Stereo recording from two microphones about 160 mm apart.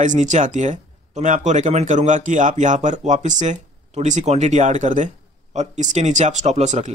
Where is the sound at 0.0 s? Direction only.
50° right (ahead or behind).